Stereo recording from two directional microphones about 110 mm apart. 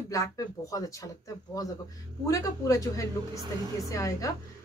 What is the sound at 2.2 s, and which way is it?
A woman's voice, 30° left (ahead or behind).